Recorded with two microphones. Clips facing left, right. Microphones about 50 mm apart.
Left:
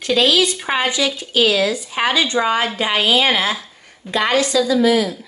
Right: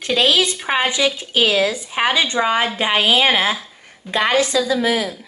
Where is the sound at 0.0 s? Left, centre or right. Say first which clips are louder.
Left 1 dB; right.